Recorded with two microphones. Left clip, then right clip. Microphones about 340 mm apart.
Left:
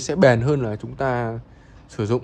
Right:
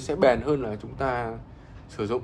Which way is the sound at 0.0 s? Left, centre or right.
Left.